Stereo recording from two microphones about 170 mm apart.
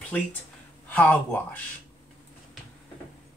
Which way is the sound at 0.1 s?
10° left (ahead or behind).